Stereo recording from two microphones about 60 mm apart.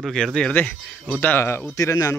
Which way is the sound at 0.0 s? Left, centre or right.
Centre.